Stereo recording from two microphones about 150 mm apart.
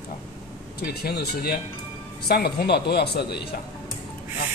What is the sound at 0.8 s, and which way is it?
Speech, 90° left.